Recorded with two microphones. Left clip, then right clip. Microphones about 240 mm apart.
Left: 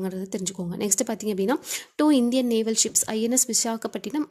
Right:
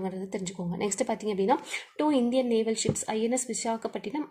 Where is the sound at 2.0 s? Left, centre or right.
Left.